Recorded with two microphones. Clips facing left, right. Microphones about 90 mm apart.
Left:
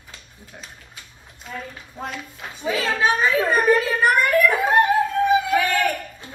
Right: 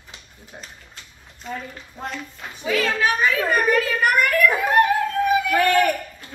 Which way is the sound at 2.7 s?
20° left (ahead or behind).